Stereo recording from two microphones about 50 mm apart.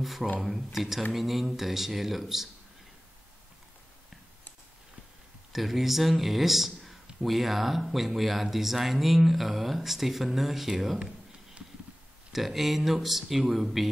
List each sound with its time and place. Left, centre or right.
0.0 s speech: centre
5.5 s speech: centre
12.3 s speech: centre